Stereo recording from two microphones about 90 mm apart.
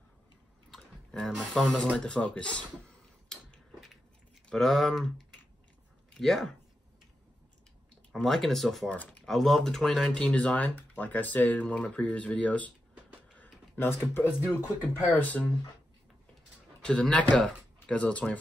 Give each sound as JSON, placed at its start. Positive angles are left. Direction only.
{"t": 0.7, "sound": "speech", "side_deg": 5}
{"t": 3.3, "sound": "a sound", "side_deg": 5}
{"t": 4.5, "sound": "speech", "side_deg": 0}
{"t": 8.1, "sound": "speech", "side_deg": 5}
{"t": 8.9, "sound": "speech", "side_deg": 20}
{"t": 9.2, "sound": "speech", "side_deg": 5}
{"t": 13.4, "sound": "speech", "side_deg": 25}
{"t": 16.8, "sound": "speech", "side_deg": 10}